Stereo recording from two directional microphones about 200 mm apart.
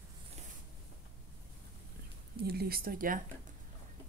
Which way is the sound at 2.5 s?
50° right (ahead or behind).